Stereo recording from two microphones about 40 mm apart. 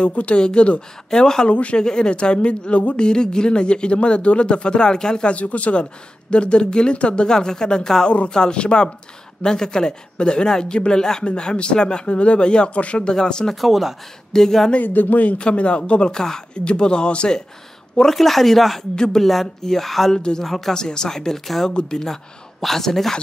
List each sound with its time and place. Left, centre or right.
0.0 s speech: left
1.5 s speech: left
5.3 s speech: left; by 13.6 s centre
13.6 s speech: centre
14.3 s speech: centre
14.8 s speech: left
15.3 s speech: left
17.9 s speech: centre
18.9 s speech: centre
19.2 s speech: centre
20.2 s speech: left
20.4 s speech: centre
20.7 s speech: centre